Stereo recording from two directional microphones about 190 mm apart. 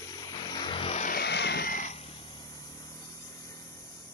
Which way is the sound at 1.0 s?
55° left (ahead or behind).